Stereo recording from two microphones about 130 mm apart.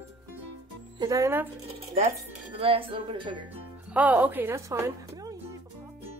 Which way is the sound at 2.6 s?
45° right (ahead or behind).